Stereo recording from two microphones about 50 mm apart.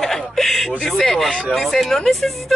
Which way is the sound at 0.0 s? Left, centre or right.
Centre.